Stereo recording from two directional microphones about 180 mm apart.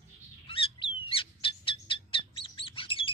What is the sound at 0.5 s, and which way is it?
Bird, 30° left (ahead or behind).